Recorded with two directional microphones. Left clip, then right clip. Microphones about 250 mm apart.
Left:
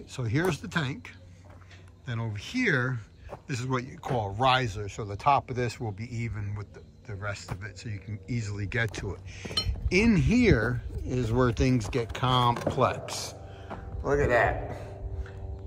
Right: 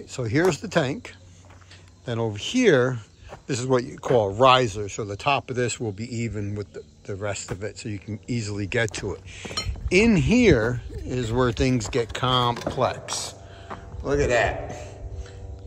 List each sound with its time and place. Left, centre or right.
0.0 s speech: centre
2.0 s speech: centre
5.9 s speech: left
7.1 s speech: centre